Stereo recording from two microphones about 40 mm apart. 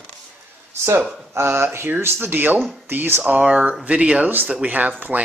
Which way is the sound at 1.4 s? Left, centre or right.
Right.